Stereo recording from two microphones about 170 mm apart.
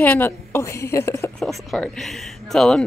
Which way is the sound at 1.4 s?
Centre (ahead or behind).